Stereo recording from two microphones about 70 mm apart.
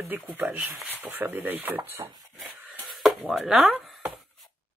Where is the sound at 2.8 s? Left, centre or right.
Centre.